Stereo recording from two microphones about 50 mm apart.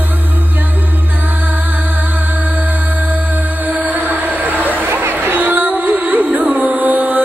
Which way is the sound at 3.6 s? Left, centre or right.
Right.